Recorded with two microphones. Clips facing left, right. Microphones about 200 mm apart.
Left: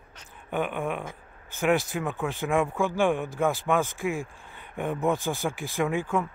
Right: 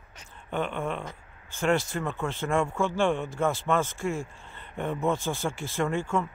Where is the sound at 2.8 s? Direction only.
15° left (ahead or behind).